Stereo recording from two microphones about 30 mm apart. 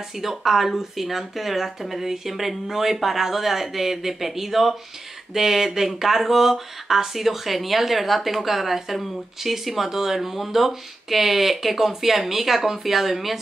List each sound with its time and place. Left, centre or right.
0.2 s speech: centre